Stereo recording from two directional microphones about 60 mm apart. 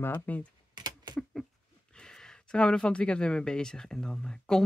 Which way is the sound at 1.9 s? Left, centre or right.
Centre.